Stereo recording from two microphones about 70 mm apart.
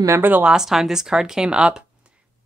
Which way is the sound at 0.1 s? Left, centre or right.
Right.